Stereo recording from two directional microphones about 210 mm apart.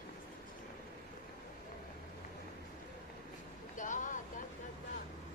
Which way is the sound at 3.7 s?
35° left (ahead or behind).